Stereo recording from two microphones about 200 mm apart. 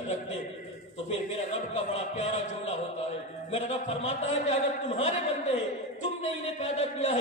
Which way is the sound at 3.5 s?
30° left (ahead or behind).